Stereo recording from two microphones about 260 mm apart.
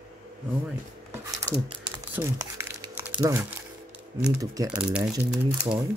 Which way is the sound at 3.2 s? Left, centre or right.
Centre.